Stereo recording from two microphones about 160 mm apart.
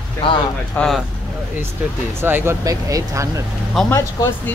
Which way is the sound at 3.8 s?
Centre (ahead or behind).